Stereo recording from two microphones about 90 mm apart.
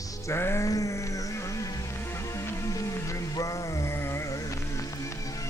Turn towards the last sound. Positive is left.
turn(degrees=35)  # may be behind; listen again after turning